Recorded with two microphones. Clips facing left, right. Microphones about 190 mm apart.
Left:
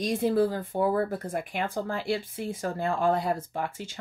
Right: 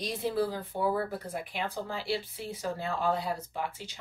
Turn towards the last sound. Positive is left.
turn(degrees=50)  # may be behind; listen again after turning